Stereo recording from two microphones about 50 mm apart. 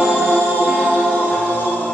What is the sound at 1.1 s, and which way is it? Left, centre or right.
Choir, left.